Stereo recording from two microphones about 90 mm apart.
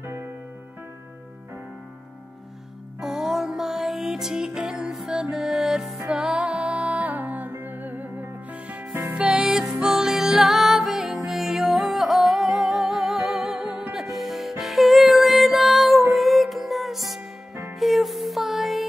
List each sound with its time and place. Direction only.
0.0 s music: 25° right (ahead or behind)
3.0 s music: 5° right (ahead or behind)